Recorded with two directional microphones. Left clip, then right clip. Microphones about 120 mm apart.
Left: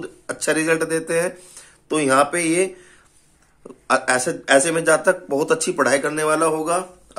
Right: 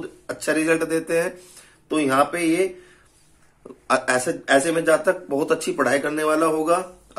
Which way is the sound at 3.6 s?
25° left (ahead or behind).